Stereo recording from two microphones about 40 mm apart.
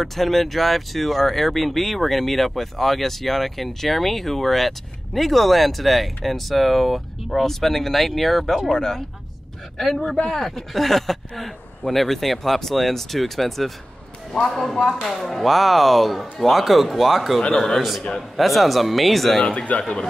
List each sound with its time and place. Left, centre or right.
0.0 s speech: centre
8.7 s speech: centre
9.8 s speech: centre
17.6 s speech: centre
18.3 s speech: centre
19.4 s speech: left
19.8 s speech: left